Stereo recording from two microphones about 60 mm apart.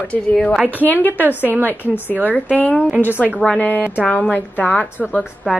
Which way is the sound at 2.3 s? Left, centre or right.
Left.